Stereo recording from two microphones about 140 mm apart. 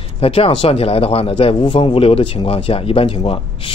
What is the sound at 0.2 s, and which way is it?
A man's voice, 45° left (ahead or behind).